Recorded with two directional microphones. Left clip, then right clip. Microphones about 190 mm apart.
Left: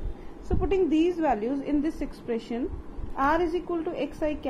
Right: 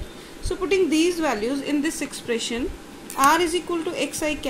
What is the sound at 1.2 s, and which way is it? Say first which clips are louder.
A woman's voice: right 2 dB; 5° right (ahead or behind).